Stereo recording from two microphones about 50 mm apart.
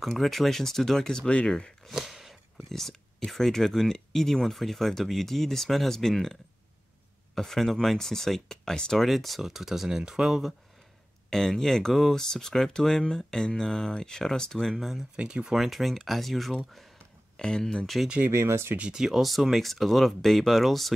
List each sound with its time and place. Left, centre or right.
0.0 s speech: centre; by 1.7 s left
1.9 s a sound: centre
2.7 s speech: centre
7.3 s speech: centre
9.0 s speech: centre
11.2 s speech: centre
14.8 s speech: centre
17.4 s speech: centre
18.3 s speech: right
18.8 s speech: right
19.0 s speech: centre